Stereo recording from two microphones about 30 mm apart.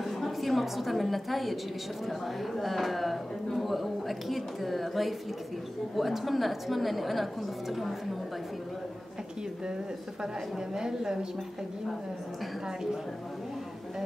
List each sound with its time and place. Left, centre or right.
0.0 s a sound: centre
2.0 s a woman's voice: centre
10.2 s a woman's voice: centre